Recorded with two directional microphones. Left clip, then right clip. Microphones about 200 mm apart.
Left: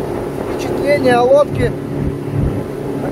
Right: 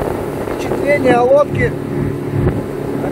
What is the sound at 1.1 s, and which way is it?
Speech, 15° left (ahead or behind).